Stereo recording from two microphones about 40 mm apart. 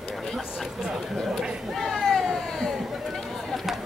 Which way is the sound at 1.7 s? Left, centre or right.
Centre.